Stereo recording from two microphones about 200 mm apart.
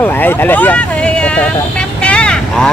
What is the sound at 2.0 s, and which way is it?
Vehicle, 5° left (ahead or behind).